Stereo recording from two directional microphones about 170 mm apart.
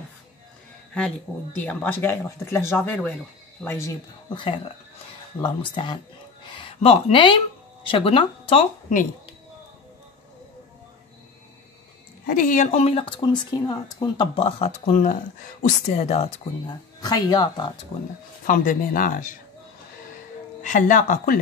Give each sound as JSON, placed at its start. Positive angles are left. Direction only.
{"t": 1.3, "sound": "speech", "side_deg": 5}
{"t": 4.3, "sound": "speech", "side_deg": 30}
{"t": 12.3, "sound": "speech", "side_deg": 50}
{"t": 16.6, "sound": "speech", "side_deg": 25}
{"t": 18.5, "sound": "speech", "side_deg": 55}
{"t": 20.6, "sound": "speech", "side_deg": 50}